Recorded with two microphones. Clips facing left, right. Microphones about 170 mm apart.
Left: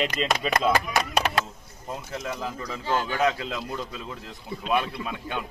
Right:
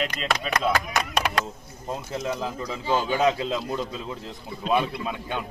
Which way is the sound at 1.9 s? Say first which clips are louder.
Right 4 dB; 25° right (ahead or behind).